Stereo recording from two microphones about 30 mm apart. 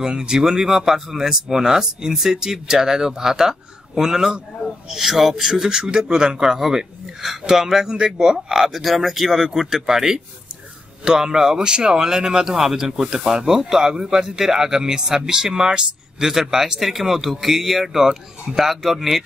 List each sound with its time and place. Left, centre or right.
0.0 s speech: right
0.5 s speech: centre
6.7 s speech: centre
8.7 s speech: centre